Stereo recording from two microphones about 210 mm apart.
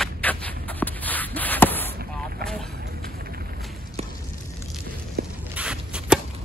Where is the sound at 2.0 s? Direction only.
45° right (ahead or behind).